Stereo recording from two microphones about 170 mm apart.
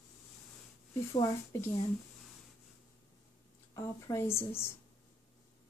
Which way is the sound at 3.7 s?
15° left (ahead or behind).